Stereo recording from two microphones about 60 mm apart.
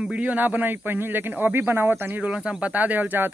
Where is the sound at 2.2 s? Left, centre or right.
Centre.